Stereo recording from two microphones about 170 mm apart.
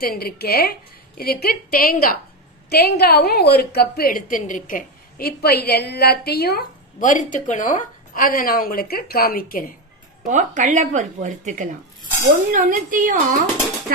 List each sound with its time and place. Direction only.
0.0 s a woman's voice: 65° left (ahead or behind)
7.0 s a woman's voice: 50° left (ahead or behind)
10.2 s a woman's voice: 45° right (ahead or behind)